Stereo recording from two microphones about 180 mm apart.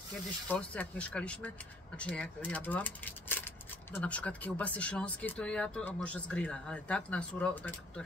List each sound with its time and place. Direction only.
0.5 s speech: 5° left (ahead or behind)